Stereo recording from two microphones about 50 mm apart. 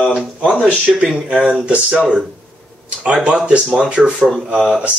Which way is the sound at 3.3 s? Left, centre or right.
Centre.